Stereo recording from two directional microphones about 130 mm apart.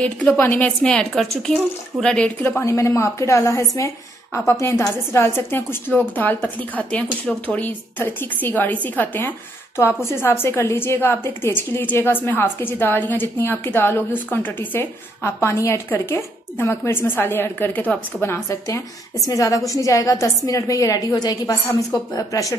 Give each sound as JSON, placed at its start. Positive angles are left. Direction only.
{"t": 0.0, "sound": "a woman's voice", "side_deg": 15}
{"t": 2.4, "sound": "a woman's voice", "side_deg": 20}